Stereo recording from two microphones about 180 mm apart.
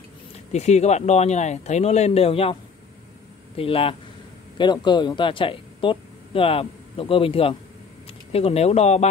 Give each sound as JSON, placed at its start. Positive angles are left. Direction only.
{"t": 0.5, "sound": "speech", "side_deg": 40}
{"t": 3.5, "sound": "speech", "side_deg": 30}